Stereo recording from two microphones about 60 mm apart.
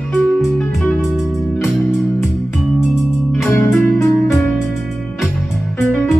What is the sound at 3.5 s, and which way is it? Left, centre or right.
Music, left.